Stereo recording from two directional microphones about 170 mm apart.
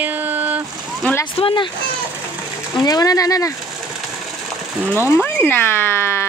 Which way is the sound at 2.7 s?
25° left (ahead or behind).